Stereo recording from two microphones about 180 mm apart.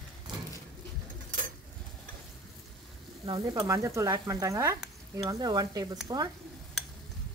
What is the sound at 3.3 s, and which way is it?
Speech, 20° right (ahead or behind).